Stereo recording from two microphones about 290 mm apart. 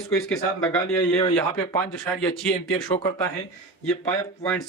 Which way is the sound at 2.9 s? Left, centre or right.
Centre.